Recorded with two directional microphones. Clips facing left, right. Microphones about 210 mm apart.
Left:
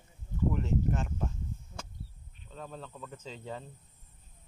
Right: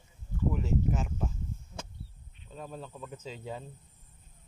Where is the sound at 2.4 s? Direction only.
10° right (ahead or behind).